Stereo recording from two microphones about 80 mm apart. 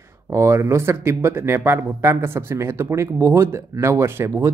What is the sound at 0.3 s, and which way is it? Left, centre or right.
Speech, right.